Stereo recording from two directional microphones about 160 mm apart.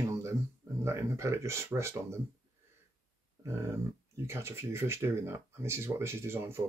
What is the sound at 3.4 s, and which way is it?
Speech, 15° right (ahead or behind).